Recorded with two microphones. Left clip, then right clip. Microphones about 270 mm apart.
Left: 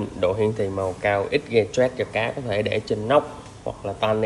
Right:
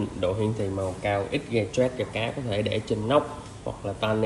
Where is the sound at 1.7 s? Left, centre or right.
Centre.